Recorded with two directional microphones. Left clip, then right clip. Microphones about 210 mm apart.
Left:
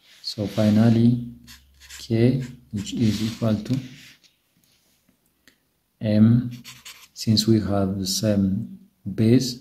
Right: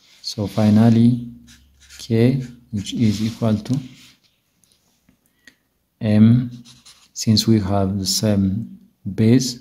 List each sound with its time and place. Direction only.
0.2 s speech: 30° right (ahead or behind)
5.9 s speech: 30° right (ahead or behind)